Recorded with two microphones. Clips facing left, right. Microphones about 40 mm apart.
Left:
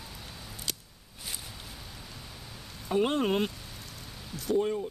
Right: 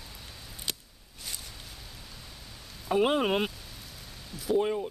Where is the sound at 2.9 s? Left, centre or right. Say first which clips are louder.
Right 2 dB; centre.